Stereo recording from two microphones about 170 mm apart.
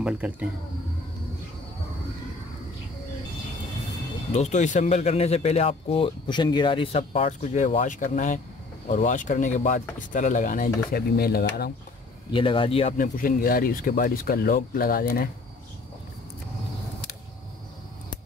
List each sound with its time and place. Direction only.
0.0 s speech: 5° right (ahead or behind)
4.3 s speech: 40° left (ahead or behind)
10.9 s speech: 65° left (ahead or behind)
12.3 s speech: 30° left (ahead or behind)
12.9 s speech: 50° left (ahead or behind)